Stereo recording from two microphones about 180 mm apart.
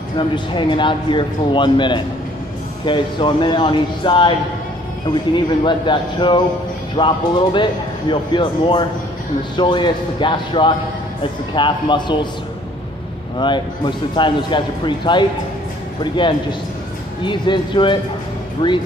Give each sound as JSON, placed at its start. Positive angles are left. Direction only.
{"t": 0.6, "sound": "a man's voice", "side_deg": 25}
{"t": 13.4, "sound": "a man's voice", "side_deg": 25}